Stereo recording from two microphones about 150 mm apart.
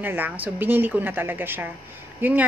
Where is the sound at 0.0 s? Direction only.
15° right (ahead or behind).